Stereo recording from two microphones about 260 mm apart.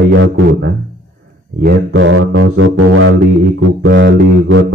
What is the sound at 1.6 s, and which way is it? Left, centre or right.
Music, right.